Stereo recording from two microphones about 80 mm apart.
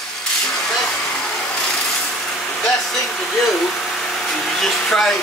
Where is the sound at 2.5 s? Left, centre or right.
Centre.